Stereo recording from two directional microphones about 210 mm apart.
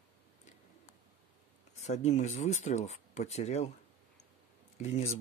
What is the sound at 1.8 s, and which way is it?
Speech, 35° left (ahead or behind).